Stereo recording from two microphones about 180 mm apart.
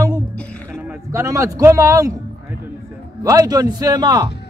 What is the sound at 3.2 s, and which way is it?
A man's voice, 20° right (ahead or behind).